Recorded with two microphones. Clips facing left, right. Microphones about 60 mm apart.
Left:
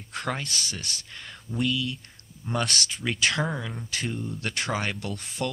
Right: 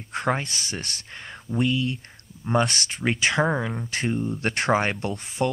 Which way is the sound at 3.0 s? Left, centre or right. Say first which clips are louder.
Right 5 dB; right.